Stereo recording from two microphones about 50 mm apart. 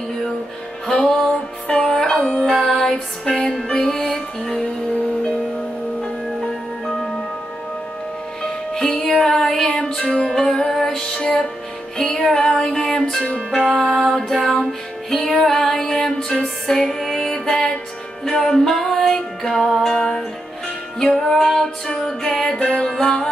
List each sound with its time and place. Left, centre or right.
1.0 s music: centre
4.1 s music: centre
8.4 s music: centre